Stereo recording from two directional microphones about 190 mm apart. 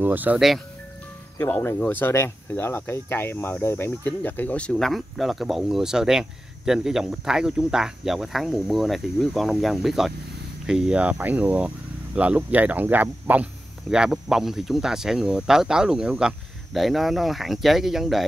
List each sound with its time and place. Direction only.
0.0 s speech: 10° right (ahead or behind)
1.4 s speech: 10° left (ahead or behind)